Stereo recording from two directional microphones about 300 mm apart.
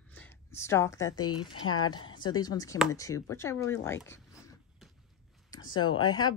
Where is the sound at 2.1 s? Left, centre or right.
Centre.